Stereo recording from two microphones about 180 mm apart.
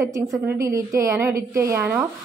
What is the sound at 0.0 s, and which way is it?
A woman's voice, 15° right (ahead or behind).